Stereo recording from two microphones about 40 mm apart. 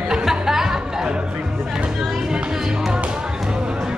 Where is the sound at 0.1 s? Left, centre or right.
Centre.